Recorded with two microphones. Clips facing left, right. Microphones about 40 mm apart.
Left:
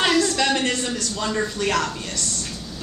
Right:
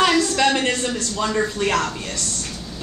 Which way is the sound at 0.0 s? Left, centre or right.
Centre.